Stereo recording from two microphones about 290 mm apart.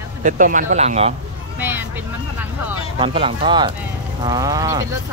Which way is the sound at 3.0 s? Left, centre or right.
Centre.